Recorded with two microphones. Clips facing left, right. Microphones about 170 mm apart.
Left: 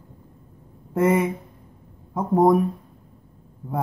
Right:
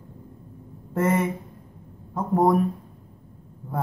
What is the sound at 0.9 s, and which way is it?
Speech, 10° left (ahead or behind).